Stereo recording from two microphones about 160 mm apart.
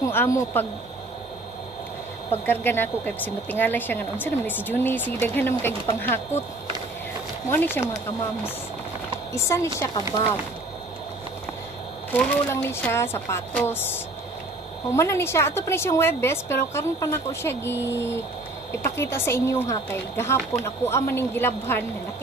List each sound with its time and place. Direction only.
0.0 s speech: 15° left (ahead or behind)
2.4 s speech: 10° left (ahead or behind)
7.4 s speech: 10° left (ahead or behind)
9.3 s speech: 15° left (ahead or behind)
12.1 s speech: 10° left (ahead or behind)